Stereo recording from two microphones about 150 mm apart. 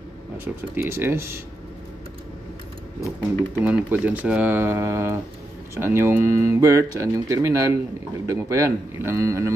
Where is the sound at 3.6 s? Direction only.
10° right (ahead or behind).